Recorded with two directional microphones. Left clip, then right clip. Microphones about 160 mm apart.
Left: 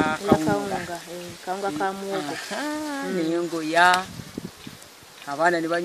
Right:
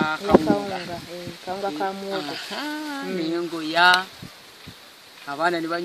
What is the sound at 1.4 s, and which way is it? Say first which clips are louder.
Frying: left 1 dB; 45° right (ahead or behind).